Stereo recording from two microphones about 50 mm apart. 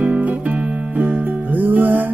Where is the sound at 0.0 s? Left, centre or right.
Right.